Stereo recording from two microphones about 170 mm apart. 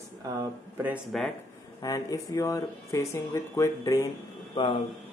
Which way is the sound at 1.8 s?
20° left (ahead or behind).